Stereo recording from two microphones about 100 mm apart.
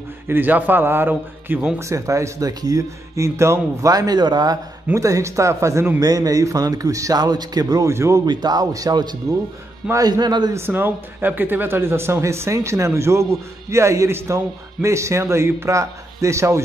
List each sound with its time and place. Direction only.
0.3 s a man's voice: 15° right (ahead or behind)
1.8 s speech: 30° right (ahead or behind)
4.9 s speech: 30° right (ahead or behind)
7.9 s speech: 30° right (ahead or behind)
8.3 s speech: 45° right (ahead or behind)
10.5 s a man's voice: 20° right (ahead or behind)